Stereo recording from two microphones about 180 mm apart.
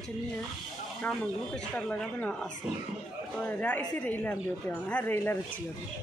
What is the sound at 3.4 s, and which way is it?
Speech, 5° left (ahead or behind).